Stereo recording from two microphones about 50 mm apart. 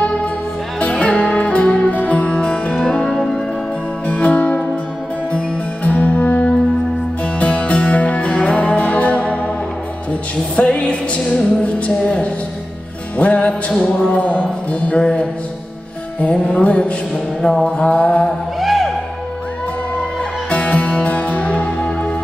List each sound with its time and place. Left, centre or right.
0.9 s music: left
4.1 s music: left
5.9 s music: left
7.3 s music: left
10.5 s music: left
17.6 s mantra: left
18.6 s music: centre
20.4 s music: left